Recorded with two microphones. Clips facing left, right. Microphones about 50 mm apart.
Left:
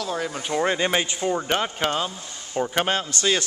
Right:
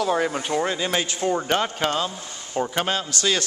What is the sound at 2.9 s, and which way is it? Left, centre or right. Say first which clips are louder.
Speech: left 1 dB; left.